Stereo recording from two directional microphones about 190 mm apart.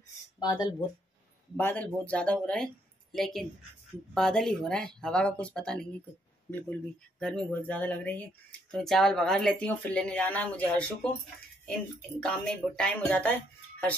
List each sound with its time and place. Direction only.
0.4 s speech: 20° left (ahead or behind)
1.6 s speech: 10° left (ahead or behind)
12.2 s speech: 5° left (ahead or behind)